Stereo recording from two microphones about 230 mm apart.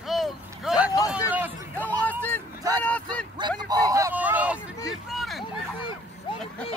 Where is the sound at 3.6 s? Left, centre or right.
Centre.